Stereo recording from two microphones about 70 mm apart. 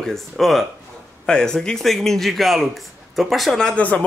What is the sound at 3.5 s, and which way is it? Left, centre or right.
Speech, centre.